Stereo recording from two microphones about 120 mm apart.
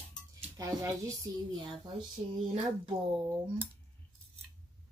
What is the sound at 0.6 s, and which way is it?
Speech, 30° right (ahead or behind).